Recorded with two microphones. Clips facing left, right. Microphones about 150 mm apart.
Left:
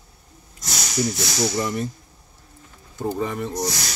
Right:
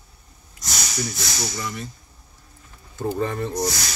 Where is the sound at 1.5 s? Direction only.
40° left (ahead or behind).